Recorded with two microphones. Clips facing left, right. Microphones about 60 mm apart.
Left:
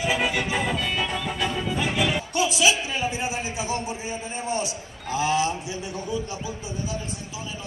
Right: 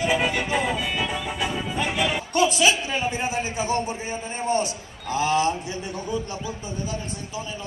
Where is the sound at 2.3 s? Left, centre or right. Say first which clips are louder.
Right 3 dB; right.